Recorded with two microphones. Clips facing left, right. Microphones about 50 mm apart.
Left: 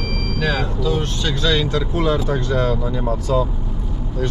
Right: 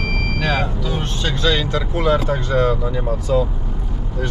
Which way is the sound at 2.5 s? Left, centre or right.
Right.